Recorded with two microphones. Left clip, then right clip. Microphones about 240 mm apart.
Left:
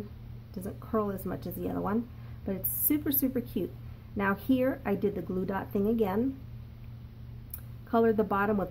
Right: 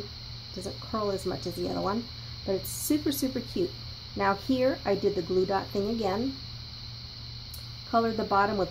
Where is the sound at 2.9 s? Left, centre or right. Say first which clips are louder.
Right 2 dB; left.